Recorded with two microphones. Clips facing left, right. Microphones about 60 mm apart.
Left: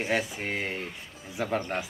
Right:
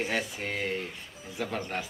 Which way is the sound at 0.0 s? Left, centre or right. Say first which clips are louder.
Left 2 dB; centre.